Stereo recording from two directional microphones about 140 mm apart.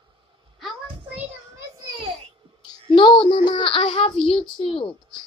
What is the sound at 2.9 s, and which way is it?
A child's voice, 35° left (ahead or behind).